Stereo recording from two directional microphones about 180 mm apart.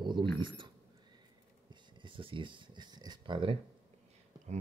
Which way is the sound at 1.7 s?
25° right (ahead or behind).